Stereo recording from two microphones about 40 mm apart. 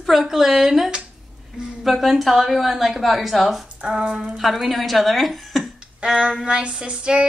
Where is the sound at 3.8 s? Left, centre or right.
Centre.